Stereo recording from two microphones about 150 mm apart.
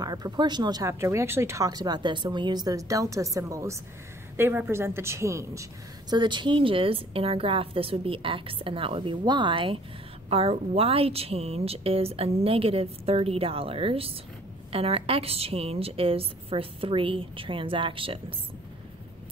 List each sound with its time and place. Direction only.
0.0 s a woman's voice: 25° right (ahead or behind)